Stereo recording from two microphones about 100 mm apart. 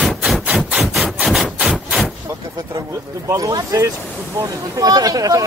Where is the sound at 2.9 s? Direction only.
35° right (ahead or behind).